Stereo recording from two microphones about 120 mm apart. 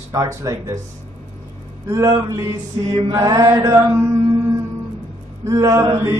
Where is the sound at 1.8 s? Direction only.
25° right (ahead or behind).